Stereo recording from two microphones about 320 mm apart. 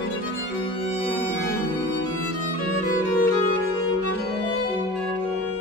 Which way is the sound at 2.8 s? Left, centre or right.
Left.